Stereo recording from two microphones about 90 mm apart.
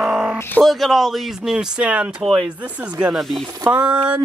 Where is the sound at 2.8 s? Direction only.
10° right (ahead or behind).